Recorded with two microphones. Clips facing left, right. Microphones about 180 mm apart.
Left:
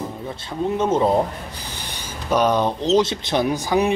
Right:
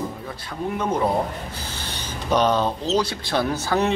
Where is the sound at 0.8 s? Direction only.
25° left (ahead or behind).